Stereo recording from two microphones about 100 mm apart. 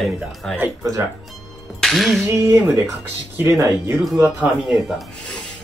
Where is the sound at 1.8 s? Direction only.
Centre (ahead or behind).